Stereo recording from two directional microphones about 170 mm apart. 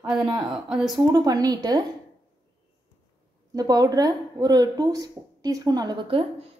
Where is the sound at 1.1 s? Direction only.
20° right (ahead or behind).